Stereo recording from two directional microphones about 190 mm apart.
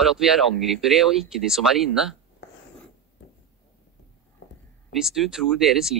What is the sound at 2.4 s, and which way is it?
Writing, 65° left (ahead or behind).